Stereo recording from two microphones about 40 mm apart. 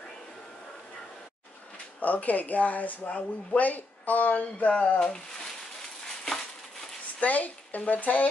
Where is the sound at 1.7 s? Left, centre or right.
Left.